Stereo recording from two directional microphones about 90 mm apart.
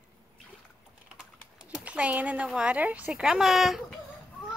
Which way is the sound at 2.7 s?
15° right (ahead or behind).